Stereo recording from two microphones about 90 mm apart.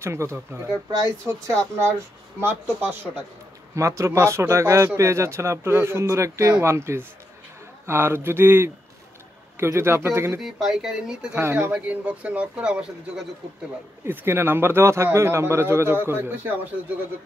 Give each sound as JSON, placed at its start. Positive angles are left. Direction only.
{"t": 0.0, "sound": "a man's voice", "side_deg": -30}
{"t": 2.4, "sound": "a man's voice", "side_deg": -20}
{"t": 3.7, "sound": "a man's voice", "side_deg": -35}
{"t": 10.4, "sound": "speech", "side_deg": -5}
{"t": 11.3, "sound": "a man's voice", "side_deg": -25}
{"t": 11.7, "sound": "speech", "side_deg": -15}
{"t": 14.0, "sound": "a man's voice", "side_deg": -25}